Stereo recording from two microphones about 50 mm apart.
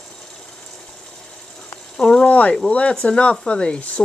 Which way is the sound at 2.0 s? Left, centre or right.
Centre.